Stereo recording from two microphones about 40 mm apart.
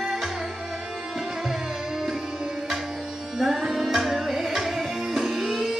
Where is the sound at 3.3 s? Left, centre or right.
Centre.